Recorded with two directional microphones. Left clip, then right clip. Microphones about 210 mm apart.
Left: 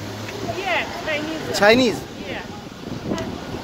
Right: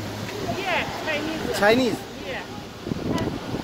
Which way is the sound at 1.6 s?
35° left (ahead or behind).